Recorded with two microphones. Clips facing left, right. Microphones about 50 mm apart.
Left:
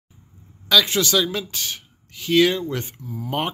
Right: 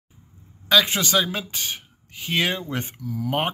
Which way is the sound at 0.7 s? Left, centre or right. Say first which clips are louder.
Left 1 dB; right.